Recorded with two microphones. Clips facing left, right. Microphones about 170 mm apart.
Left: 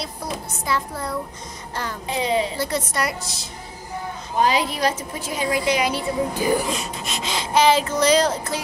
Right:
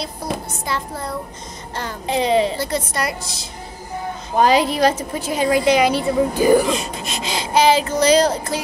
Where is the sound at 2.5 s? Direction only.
Centre (ahead or behind).